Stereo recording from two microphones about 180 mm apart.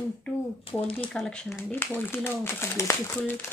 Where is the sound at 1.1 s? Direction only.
5° left (ahead or behind).